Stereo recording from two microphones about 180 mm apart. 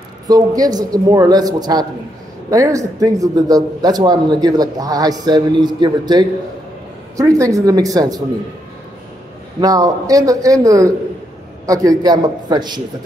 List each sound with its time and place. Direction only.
0.3 s speech: 20° right (ahead or behind)
9.6 s speech: 20° right (ahead or behind)